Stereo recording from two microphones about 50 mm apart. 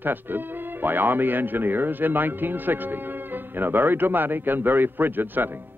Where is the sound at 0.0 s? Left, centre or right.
Right.